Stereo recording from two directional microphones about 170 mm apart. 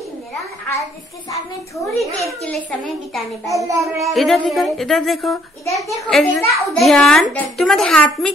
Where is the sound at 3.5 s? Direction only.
20° right (ahead or behind).